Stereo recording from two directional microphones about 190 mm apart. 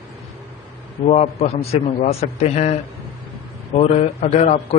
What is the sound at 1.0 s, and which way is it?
Speech, 35° left (ahead or behind).